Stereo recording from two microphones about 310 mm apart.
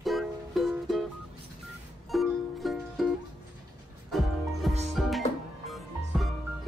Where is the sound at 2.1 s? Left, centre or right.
Centre.